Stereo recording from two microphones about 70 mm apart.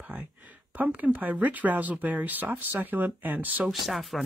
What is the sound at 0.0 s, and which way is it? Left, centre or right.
Speech, right.